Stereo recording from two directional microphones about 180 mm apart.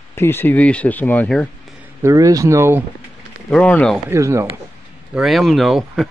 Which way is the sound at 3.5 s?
5° left (ahead or behind).